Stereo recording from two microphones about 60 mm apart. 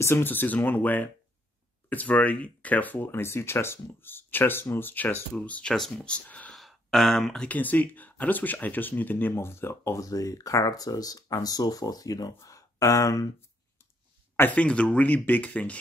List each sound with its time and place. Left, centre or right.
0.0 s speech: left
0.3 s speech: left
3.1 s speech: left
6.5 s a sound: centre
7.3 s speech: left
9.3 s speech: left
10.0 s speech: left
12.4 s speech: left
14.5 s speech: left